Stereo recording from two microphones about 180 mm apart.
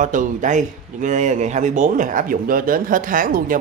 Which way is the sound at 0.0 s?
45° right (ahead or behind).